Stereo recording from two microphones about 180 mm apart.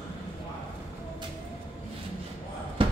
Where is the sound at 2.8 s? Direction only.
30° right (ahead or behind).